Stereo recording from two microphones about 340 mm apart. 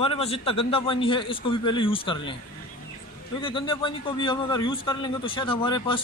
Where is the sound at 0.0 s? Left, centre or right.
Centre.